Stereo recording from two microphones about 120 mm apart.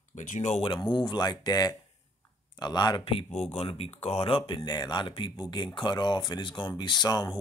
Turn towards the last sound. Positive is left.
turn(degrees=35)  # may be behind; listen again after turning